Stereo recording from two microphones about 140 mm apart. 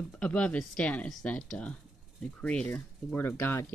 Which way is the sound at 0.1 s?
10° left (ahead or behind).